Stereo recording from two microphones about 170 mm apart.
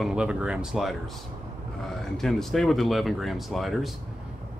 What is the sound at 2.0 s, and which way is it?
Speech, centre (ahead or behind).